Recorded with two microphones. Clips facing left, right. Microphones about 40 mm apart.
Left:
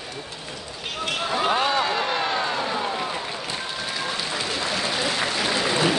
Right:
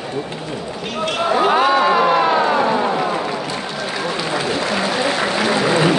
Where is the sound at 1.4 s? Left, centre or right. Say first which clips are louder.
Right 7 dB; centre.